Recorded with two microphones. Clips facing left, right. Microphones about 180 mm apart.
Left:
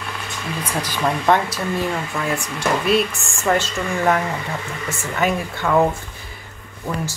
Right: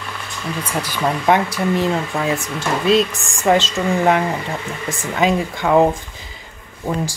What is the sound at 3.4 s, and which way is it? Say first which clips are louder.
Speech: right 4 dB; 20° right (ahead or behind).